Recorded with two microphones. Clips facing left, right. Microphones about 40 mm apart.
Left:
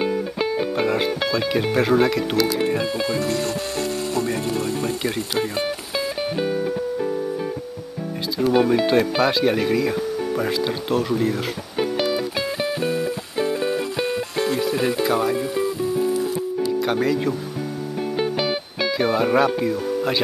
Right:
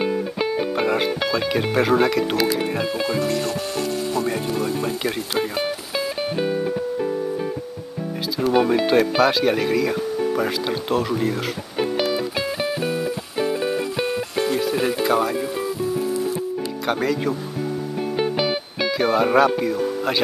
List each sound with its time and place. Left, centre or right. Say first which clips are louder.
0.0 s music: even; centre
2.3 s speech: left 1 dB; centre
3.2 s speech: right 1 dB; right
4.3 s speech: even; centre
8.4 s speech: left 1 dB; centre
11.8 s music: even; centre
16.8 s speech: right 2 dB; centre
18.1 s music: right 1 dB; centre